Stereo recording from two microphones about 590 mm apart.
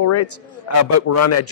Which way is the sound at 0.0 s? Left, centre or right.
Left.